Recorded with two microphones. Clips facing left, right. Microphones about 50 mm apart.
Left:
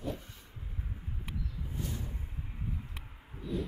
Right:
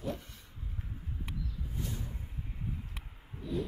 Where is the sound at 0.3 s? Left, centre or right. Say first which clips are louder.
Even; left.